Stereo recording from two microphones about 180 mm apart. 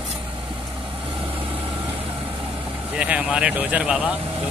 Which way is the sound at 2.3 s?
30° right (ahead or behind).